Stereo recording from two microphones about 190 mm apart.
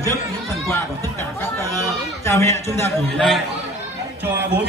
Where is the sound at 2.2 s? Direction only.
15° left (ahead or behind).